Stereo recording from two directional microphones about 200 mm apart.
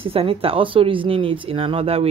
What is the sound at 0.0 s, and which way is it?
Speech, 30° right (ahead or behind).